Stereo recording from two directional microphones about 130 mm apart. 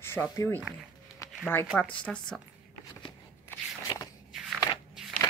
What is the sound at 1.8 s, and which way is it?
Speech, 10° left (ahead or behind).